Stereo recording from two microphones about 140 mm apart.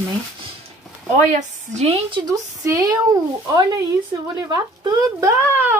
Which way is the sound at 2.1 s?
30° right (ahead or behind).